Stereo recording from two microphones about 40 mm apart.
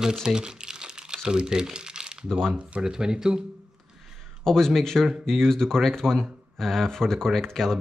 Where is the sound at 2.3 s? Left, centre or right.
Centre.